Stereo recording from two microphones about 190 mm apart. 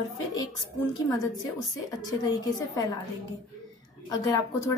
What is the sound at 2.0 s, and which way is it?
Speech, 20° left (ahead or behind).